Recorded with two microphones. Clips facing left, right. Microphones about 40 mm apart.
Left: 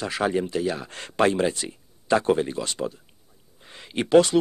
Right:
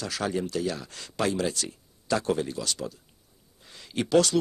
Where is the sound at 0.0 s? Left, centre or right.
Left.